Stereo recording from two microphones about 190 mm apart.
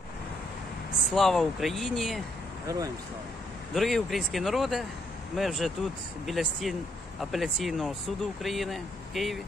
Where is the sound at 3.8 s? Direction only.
Centre (ahead or behind).